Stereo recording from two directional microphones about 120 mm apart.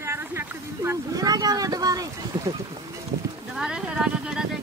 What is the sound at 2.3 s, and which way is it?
Speech, 40° right (ahead or behind).